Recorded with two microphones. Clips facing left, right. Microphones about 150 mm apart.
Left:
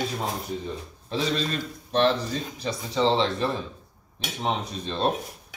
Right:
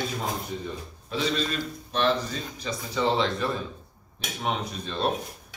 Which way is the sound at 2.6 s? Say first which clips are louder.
Left 2 dB; 30° left (ahead or behind).